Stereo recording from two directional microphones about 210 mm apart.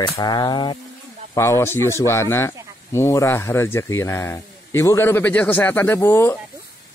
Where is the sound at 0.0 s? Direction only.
20° left (ahead or behind).